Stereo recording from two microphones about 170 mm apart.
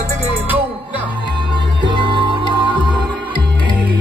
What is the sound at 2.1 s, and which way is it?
Music, 30° right (ahead or behind).